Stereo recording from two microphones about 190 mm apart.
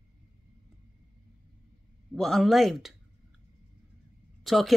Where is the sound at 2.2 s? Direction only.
Centre (ahead or behind).